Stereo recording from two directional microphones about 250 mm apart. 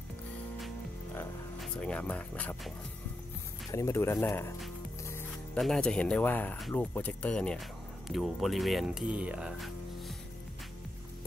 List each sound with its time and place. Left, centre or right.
1.1 s music: centre
3.7 s speech: centre